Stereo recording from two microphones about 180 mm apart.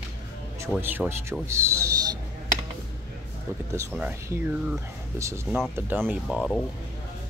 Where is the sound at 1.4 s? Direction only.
15° right (ahead or behind).